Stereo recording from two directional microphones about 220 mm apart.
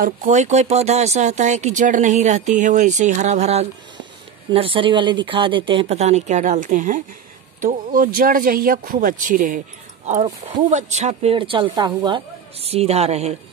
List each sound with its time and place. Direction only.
0.0 s speech: 35° right (ahead or behind)